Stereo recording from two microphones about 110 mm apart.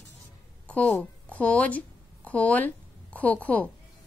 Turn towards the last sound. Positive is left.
turn(degrees=15)  # may be behind; listen again after turning